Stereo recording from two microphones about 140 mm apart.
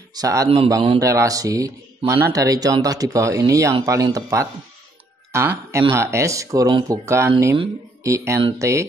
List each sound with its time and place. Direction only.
0.1 s speech: 25° right (ahead or behind)